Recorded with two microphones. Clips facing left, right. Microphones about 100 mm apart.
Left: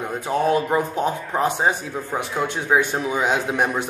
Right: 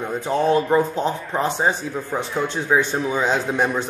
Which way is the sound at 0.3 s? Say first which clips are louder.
Right 2 dB; 10° left (ahead or behind).